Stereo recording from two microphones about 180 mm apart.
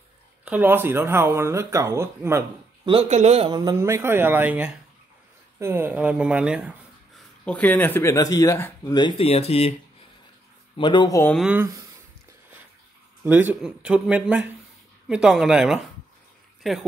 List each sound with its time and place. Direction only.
0.5 s speech: 10° right (ahead or behind)
2.8 s speech: 30° right (ahead or behind); by 6.7 s 5° right (ahead or behind)
7.4 s speech: 5° left (ahead or behind)
8.9 s speech: 30° left (ahead or behind)
10.8 s speech: 25° left (ahead or behind)
11.3 s speech: 10° right (ahead or behind)
13.2 s speech: 10° right (ahead or behind)